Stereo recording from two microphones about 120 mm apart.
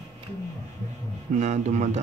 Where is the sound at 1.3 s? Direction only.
75° right (ahead or behind).